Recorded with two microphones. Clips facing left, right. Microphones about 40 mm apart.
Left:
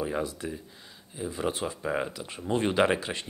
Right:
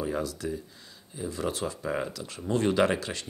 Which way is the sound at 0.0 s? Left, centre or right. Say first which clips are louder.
Even; left.